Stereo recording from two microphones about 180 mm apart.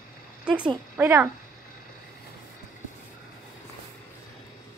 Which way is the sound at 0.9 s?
10° right (ahead or behind).